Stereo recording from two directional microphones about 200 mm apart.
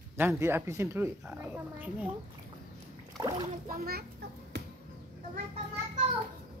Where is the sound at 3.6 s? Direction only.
50° right (ahead or behind).